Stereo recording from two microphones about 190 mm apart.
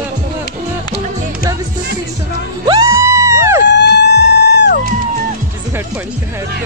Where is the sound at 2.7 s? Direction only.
15° right (ahead or behind).